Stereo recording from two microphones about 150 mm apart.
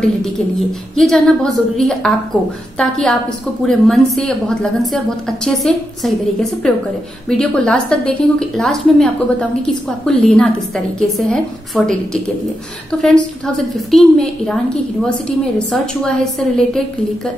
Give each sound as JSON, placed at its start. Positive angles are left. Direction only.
{"t": 0.9, "sound": "a woman's voice", "side_deg": 5}